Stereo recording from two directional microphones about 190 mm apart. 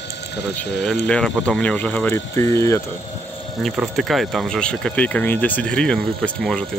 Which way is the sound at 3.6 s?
Centre (ahead or behind).